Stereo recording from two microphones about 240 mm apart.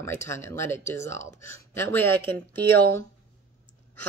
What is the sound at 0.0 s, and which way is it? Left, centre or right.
Speech, centre.